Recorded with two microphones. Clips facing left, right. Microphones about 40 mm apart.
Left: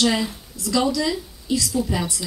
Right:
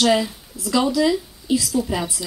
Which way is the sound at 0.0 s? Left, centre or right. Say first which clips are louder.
Right 3 dB; centre.